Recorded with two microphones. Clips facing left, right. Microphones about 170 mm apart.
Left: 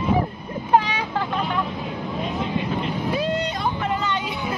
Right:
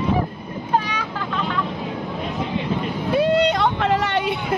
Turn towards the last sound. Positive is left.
turn(degrees=-75)  # may be behind; listen again after turning